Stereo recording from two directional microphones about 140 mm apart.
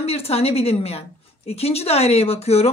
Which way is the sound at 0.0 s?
45° left (ahead or behind).